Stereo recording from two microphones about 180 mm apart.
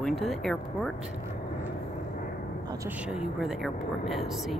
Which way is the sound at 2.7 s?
15° right (ahead or behind).